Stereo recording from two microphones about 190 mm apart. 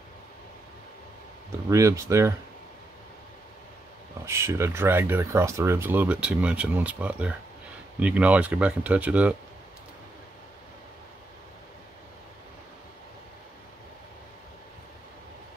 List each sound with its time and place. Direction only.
1.7 s speech: 15° right (ahead or behind)
4.3 s speech: 15° right (ahead or behind)